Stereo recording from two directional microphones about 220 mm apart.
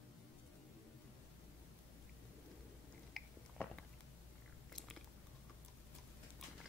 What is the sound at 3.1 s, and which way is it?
Biting, 5° left (ahead or behind).